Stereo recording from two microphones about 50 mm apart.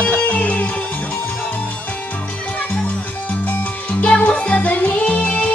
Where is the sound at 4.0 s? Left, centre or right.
Left.